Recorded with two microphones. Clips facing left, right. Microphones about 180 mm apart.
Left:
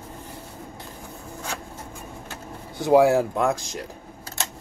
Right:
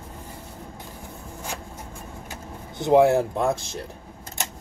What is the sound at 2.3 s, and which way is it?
Speech, 20° right (ahead or behind).